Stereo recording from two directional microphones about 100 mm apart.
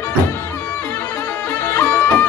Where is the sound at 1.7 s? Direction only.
20° left (ahead or behind).